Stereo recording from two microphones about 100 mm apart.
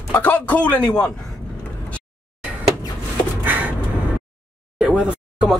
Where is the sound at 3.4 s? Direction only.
15° right (ahead or behind).